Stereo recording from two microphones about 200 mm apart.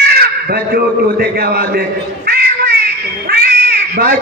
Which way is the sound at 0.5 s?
50° right (ahead or behind).